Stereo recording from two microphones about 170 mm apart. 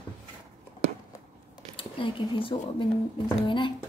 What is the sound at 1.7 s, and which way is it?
A woman's voice, 30° left (ahead or behind).